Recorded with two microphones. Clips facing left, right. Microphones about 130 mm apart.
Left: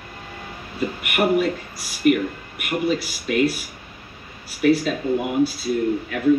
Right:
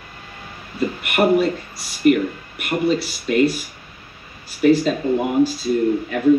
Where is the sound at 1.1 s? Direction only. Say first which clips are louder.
Right 3 dB; 35° right (ahead or behind).